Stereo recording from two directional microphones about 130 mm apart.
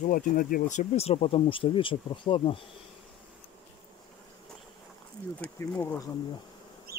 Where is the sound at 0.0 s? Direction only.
90° left; by 2.6 s 40° left (ahead or behind).